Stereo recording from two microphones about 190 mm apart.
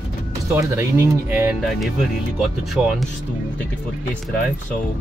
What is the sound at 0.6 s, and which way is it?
Speech, 15° right (ahead or behind).